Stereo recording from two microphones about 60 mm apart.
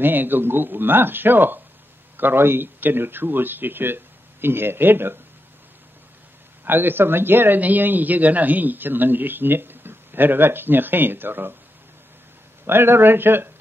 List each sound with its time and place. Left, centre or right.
0.0 s a man's voice: right
6.6 s a man's voice: right
12.6 s a man's voice: right